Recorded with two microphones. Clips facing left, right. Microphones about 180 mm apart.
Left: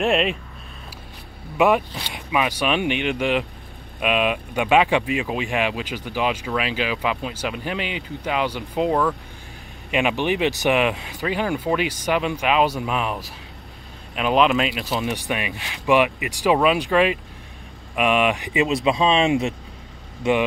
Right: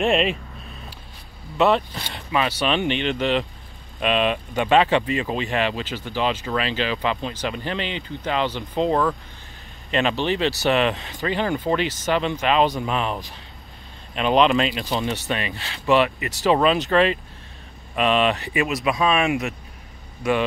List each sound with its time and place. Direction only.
0.0 s speech: centre (ahead or behind)
1.6 s speech: 10° left (ahead or behind); by 19.5 s 25° left (ahead or behind)